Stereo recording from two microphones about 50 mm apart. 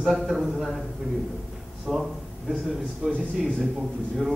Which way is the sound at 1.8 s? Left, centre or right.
Centre.